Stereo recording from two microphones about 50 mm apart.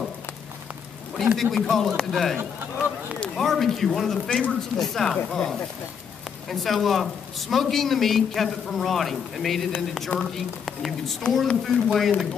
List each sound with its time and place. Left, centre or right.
1.2 s a man's voice: centre
2.3 s speech: right
3.3 s a man's voice: centre
4.3 s speech: centre
4.7 s speech: centre
6.5 s a man's voice: centre